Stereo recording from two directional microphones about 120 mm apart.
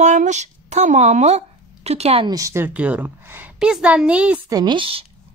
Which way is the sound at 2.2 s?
25° right (ahead or behind).